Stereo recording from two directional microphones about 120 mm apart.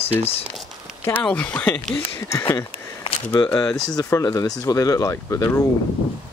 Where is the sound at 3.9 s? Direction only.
30° left (ahead or behind).